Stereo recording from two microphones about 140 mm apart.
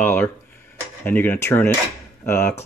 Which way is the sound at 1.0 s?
15° left (ahead or behind).